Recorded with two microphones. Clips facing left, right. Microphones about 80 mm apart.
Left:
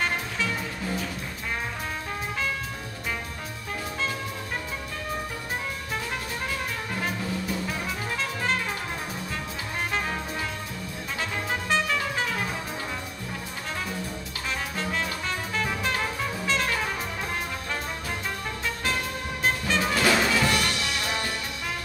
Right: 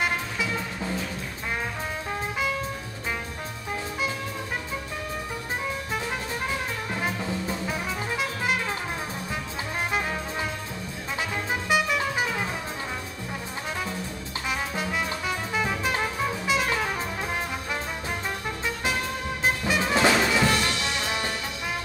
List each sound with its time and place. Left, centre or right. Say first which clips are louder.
7.0 s music: right 1 dB; centre
11.7 s music: right 2 dB; centre
14.8 s music: right 1 dB; centre
19.4 s music: even; centre